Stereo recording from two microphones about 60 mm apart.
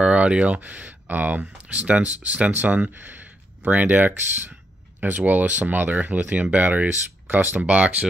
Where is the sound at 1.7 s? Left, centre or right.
Right.